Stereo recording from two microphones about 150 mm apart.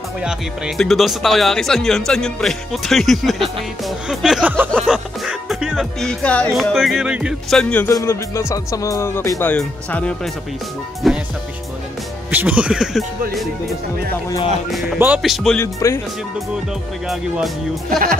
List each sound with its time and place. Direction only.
0.2 s speech: 5° right (ahead or behind)
7.9 s speech: 20° left (ahead or behind); by 11.2 s centre (ahead or behind)
12.3 s speech: 10° right (ahead or behind)
14.7 s speech: centre (ahead or behind)
15.6 s speech: 20° left (ahead or behind)
17.8 s speech: 65° right (ahead or behind)